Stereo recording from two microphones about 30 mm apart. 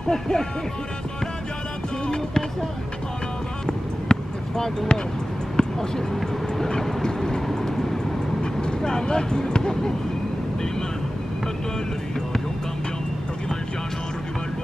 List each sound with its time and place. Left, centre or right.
0.1 s speech: left
3.6 s a sound: left
5.6 s speech: centre
7.0 s vehicle: left
7.6 s vehicle: centre
8.4 s speech: left